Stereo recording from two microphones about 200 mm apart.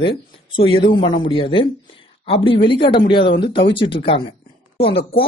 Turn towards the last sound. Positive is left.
turn(degrees=30)  # may be behind; listen again after turning